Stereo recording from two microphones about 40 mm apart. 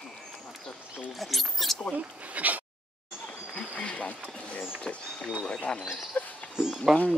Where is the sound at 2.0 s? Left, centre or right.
Right.